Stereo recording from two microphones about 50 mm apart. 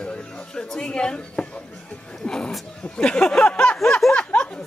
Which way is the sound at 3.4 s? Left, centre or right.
Left.